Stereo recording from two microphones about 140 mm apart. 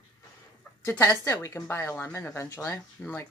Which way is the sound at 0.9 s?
20° left (ahead or behind).